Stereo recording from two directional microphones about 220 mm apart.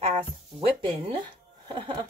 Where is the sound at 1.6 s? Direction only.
20° right (ahead or behind).